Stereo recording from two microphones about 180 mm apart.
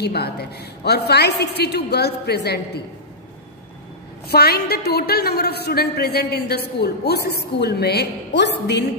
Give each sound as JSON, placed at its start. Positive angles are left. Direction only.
{"t": 0.0, "sound": "a woman's voice", "side_deg": 65}
{"t": 4.3, "sound": "a woman's voice", "side_deg": 60}